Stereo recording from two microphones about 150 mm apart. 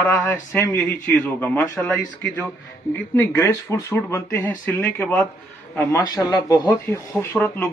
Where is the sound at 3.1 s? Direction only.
20° left (ahead or behind).